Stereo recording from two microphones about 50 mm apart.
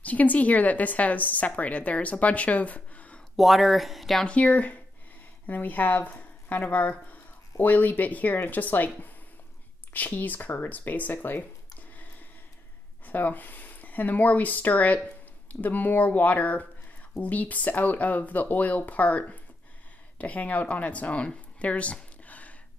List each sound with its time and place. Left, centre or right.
0.0 s a woman's voice: left
3.3 s speech: centre
4.3 s a woman's voice: left
13.0 s a woman's voice: left
21.5 s a sound: left